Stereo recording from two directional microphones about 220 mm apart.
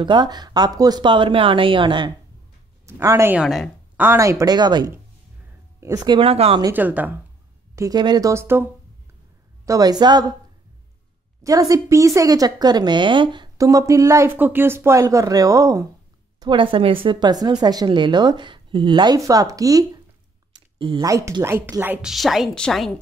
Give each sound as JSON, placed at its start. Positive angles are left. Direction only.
{"t": 0.0, "sound": "speech", "side_deg": -20}
{"t": 3.4, "sound": "speech", "side_deg": 0}
{"t": 4.0, "sound": "speech", "side_deg": -10}
{"t": 6.6, "sound": "speech", "side_deg": -10}
{"t": 9.7, "sound": "speech", "side_deg": -15}
{"t": 11.4, "sound": "speech", "side_deg": -15}